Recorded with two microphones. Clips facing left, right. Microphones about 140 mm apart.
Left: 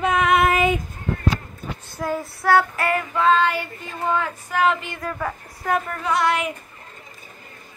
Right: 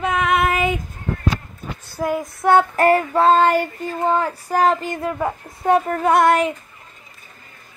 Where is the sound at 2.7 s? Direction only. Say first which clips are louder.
Right 8 dB; 40° right (ahead or behind).